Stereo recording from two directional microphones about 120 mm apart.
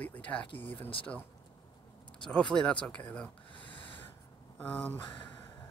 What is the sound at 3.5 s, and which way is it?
Snort, 45° left (ahead or behind).